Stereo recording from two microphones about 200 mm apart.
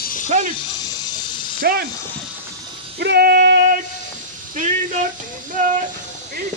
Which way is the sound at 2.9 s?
55° right (ahead or behind).